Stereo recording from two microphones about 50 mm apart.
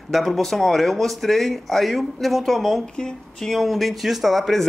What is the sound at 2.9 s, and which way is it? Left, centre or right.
Speech, centre.